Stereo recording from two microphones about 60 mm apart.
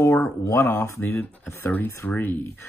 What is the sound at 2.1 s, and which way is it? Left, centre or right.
Speech, left.